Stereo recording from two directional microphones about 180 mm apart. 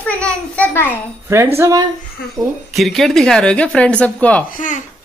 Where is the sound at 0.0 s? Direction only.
10° left (ahead or behind).